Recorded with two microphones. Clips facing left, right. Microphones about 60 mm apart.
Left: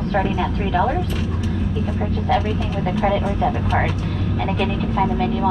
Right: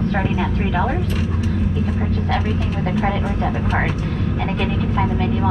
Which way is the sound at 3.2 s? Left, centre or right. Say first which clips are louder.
Left 2 dB; centre.